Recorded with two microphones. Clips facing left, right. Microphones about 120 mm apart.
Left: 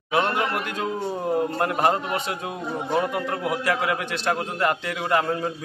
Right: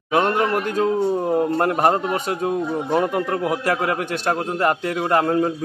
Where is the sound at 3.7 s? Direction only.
45° right (ahead or behind).